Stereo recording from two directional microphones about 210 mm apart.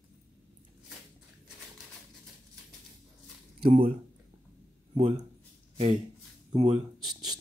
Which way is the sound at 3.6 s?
25° right (ahead or behind).